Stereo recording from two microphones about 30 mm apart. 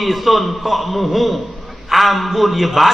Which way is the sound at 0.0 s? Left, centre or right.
Centre.